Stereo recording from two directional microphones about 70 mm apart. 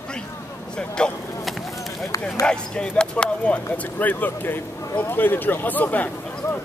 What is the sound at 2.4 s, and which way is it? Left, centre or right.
Speech, centre.